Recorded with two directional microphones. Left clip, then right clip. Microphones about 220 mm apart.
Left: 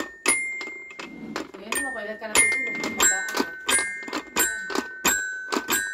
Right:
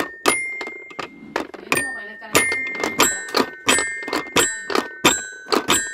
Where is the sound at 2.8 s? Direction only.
40° right (ahead or behind).